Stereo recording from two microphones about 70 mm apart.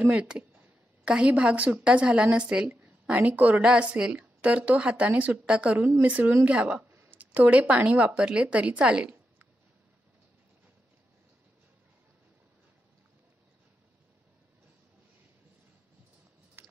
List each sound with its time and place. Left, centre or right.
0.0 s a woman's voice: centre
6.9 s speech: right
16.6 s biting: right